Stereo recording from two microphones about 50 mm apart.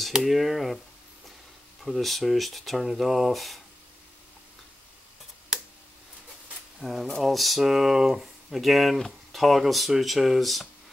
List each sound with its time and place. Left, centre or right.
0.2 s speech: centre
1.8 s speech: centre
6.8 s speech: centre